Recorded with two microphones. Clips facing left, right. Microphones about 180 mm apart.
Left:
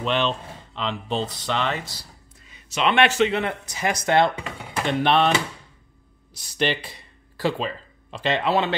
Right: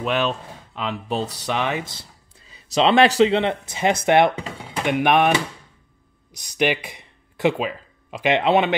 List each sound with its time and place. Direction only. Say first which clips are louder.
0.0 s speech: right 1 dB; 5° right (ahead or behind)